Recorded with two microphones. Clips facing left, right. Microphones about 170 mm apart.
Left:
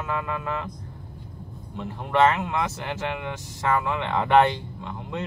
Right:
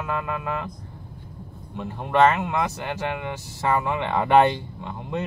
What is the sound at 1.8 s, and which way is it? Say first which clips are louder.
Speech: right 2 dB; 15° right (ahead or behind).